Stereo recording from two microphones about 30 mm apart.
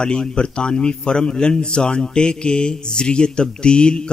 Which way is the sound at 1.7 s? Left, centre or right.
Left.